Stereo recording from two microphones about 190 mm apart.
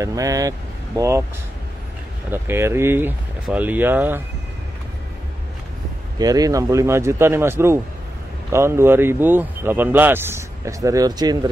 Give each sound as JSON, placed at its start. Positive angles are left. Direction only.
{"t": 0.0, "sound": "speech", "side_deg": -15}
{"t": 2.3, "sound": "speech", "side_deg": -10}
{"t": 6.1, "sound": "speech", "side_deg": -20}